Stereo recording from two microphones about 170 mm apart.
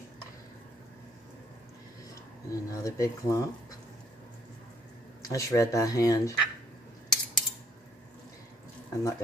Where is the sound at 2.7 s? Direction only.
20° left (ahead or behind).